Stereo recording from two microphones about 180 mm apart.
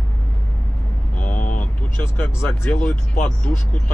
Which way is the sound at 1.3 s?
45° left (ahead or behind).